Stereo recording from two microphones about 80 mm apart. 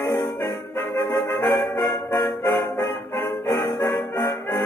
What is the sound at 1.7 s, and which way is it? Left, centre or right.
Music, left.